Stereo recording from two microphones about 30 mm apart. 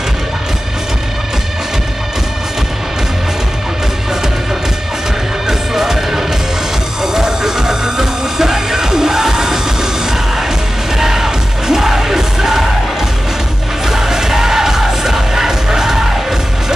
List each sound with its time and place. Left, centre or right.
5.5 s music: centre
11.0 s music: centre
13.8 s music: centre